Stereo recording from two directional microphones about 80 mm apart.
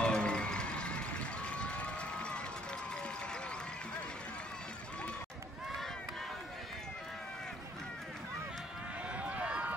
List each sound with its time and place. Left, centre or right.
0.0 s music: centre
9.1 s run: centre